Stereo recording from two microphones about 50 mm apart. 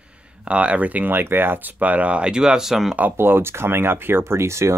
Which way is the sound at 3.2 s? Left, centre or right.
Right.